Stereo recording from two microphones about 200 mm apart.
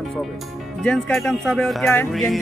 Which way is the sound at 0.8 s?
Centre (ahead or behind).